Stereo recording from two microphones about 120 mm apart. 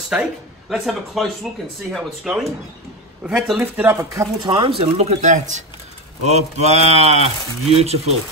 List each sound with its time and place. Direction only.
0.1 s speech: 5° right (ahead or behind)
3.5 s speech: 20° right (ahead or behind)
4.4 s speech: 40° right (ahead or behind); by 5.6 s 85° right
6.2 s speech: 65° right (ahead or behind)